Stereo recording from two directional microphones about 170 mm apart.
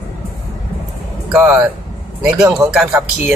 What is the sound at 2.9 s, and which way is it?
Speech, 15° right (ahead or behind).